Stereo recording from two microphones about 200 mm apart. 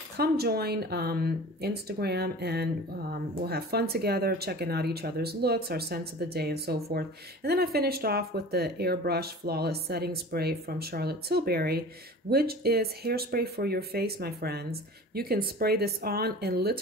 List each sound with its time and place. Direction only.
0.2 s a woman's voice: 50° right (ahead or behind)